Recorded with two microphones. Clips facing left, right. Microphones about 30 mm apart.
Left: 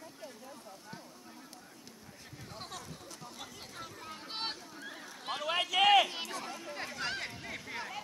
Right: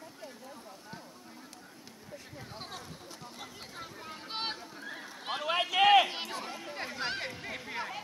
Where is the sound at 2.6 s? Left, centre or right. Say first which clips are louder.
Even; centre.